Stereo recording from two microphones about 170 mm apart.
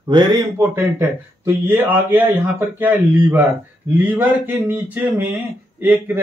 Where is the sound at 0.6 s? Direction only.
15° right (ahead or behind).